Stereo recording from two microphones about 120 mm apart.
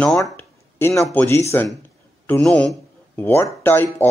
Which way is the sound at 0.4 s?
20° left (ahead or behind).